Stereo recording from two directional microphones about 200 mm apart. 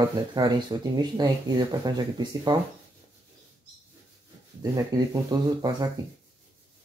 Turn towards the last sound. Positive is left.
turn(degrees=-20)  # may be behind; listen again after turning